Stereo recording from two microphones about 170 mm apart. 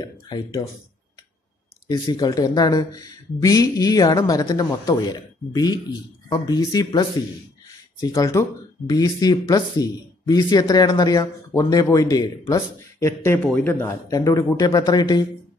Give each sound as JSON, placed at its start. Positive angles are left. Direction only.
{"t": 0.0, "sound": "speech", "side_deg": 25}
{"t": 1.9, "sound": "speech", "side_deg": 25}